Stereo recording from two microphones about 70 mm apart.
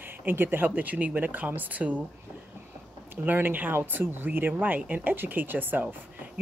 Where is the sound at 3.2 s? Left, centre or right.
Right.